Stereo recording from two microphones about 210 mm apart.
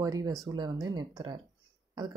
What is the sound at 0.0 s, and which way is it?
Speech, 15° right (ahead or behind).